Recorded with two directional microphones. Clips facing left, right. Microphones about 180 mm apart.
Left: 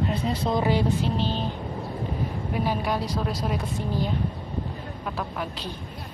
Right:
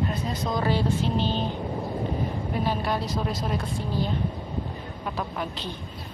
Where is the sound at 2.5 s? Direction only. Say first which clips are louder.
Left 1 dB; 10° left (ahead or behind).